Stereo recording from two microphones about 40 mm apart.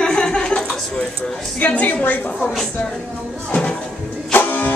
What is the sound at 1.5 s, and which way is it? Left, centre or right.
Speech, left.